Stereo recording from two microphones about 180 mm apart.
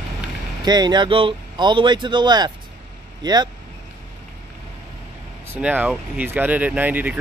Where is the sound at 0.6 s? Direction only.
25° right (ahead or behind).